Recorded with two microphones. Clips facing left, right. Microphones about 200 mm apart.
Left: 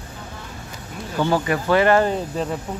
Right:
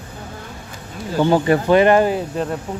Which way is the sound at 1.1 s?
20° right (ahead or behind).